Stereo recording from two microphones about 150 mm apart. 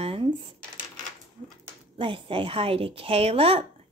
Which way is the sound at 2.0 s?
35° right (ahead or behind).